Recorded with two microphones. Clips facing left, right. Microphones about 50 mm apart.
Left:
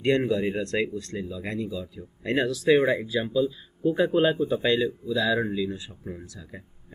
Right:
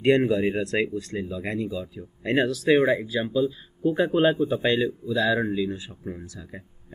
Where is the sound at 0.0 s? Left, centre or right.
Centre.